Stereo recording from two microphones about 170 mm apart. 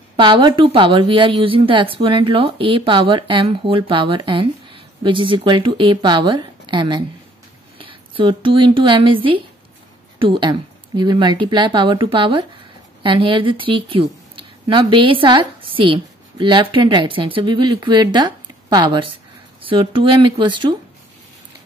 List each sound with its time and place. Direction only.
0.1 s a woman's voice: 30° right (ahead or behind)